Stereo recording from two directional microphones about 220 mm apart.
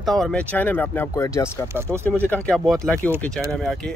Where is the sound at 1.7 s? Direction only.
10° right (ahead or behind).